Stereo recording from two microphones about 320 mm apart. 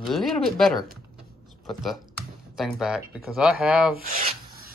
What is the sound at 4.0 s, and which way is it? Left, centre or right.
Rub, right.